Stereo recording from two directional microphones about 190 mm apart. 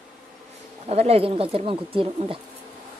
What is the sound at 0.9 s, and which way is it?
Speech, 35° right (ahead or behind).